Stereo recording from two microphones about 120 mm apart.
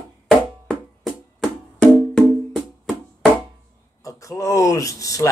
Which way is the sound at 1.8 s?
10° left (ahead or behind).